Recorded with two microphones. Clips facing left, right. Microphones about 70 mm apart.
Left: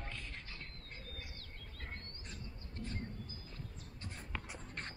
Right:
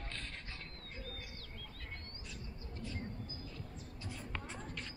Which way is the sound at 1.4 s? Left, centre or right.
Left.